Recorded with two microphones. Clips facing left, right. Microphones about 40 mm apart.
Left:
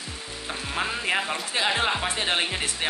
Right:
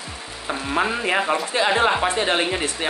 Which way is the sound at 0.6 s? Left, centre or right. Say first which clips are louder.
Right 6 dB; centre.